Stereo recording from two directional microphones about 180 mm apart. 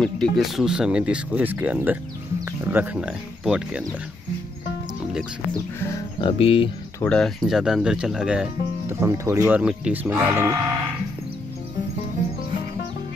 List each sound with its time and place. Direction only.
0.0 s speech: centre (ahead or behind)
6.2 s speech: 30° left (ahead or behind)
7.0 s speech: 5° left (ahead or behind); by 9.4 s 15° right (ahead or behind)
9.5 s speech: 5° right (ahead or behind)